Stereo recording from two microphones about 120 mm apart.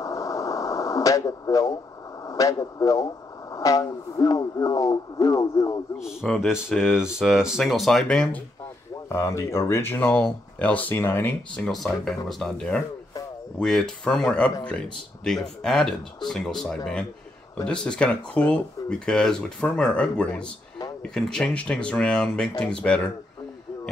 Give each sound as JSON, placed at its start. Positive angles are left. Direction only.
{"t": 0.0, "sound": "radio", "side_deg": 30}
{"t": 2.2, "sound": "speech", "side_deg": 30}
{"t": 5.9, "sound": "speech", "side_deg": 0}
{"t": 9.1, "sound": "speech", "side_deg": 25}